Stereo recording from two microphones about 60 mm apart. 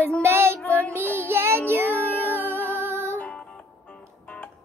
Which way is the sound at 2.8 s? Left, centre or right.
Right.